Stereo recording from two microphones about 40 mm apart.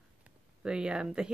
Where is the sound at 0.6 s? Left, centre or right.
Right.